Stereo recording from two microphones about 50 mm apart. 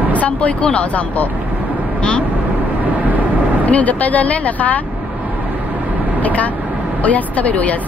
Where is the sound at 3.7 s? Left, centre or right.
Left.